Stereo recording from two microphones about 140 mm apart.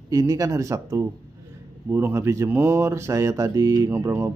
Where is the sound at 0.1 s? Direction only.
25° right (ahead or behind).